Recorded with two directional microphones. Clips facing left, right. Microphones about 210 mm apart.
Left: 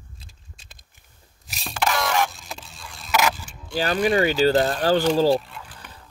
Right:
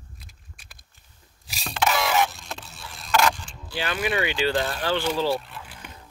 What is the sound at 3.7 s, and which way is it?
Speech, 40° left (ahead or behind).